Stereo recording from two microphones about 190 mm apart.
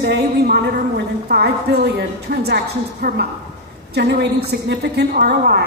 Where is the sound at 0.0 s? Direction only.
60° right (ahead or behind).